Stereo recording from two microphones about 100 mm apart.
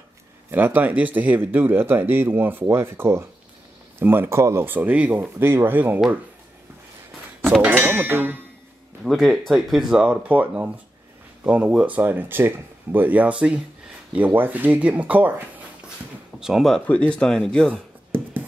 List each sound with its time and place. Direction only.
0.5 s speech: 20° right (ahead or behind)
7.6 s speech: 20° right (ahead or behind)
9.0 s speech: 5° right (ahead or behind)
16.3 s speech: 5° right (ahead or behind)
16.8 s speech: 15° left (ahead or behind)